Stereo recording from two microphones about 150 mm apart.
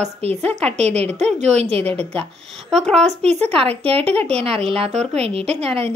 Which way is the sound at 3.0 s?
45° right (ahead or behind).